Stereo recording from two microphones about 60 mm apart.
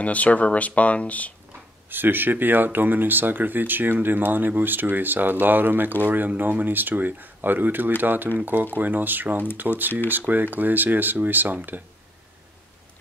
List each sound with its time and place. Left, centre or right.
0.0 s speech: left
1.9 s speech: right